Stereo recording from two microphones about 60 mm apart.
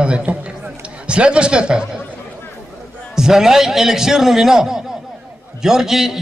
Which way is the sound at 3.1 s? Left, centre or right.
Centre.